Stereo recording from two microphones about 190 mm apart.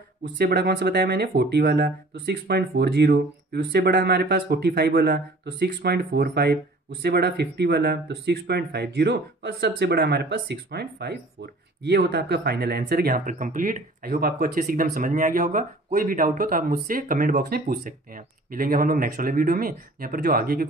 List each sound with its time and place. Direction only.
0.4 s speech: 50° right (ahead or behind)